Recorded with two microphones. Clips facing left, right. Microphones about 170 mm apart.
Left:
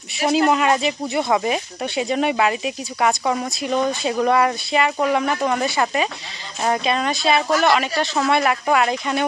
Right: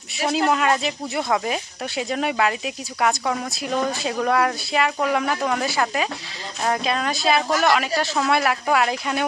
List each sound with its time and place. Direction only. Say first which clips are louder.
0.3 s speech: left 3 dB; 5° left (ahead or behind)